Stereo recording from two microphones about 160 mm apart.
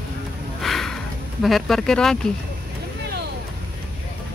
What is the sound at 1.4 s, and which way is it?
Speech, centre (ahead or behind).